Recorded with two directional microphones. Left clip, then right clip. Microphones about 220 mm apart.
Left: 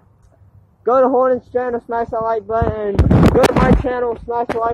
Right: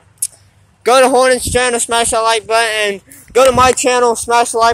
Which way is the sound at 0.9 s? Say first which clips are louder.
Right 4 dB; 30° right (ahead or behind).